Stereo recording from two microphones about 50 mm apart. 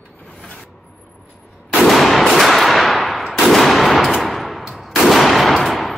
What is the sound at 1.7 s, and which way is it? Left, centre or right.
Gunshot, centre.